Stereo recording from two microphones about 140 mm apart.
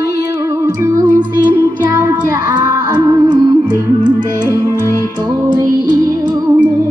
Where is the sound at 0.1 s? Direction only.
20° right (ahead or behind).